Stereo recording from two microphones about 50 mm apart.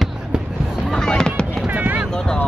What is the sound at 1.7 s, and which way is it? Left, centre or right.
Basketball bounce, right.